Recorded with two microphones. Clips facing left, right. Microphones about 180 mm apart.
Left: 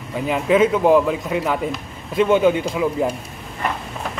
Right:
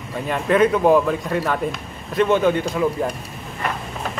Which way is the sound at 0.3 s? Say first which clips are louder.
Left 1 dB; 5° left (ahead or behind).